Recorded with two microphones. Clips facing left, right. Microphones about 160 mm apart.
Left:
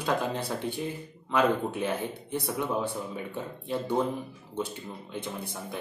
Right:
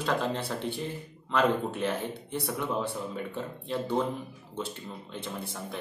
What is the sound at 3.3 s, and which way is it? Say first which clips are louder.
Speech: left 2 dB; 10° left (ahead or behind).